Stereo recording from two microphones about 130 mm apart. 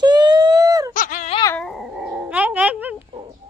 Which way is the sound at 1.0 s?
90° left.